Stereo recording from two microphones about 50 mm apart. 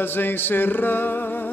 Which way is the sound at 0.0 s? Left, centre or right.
Left.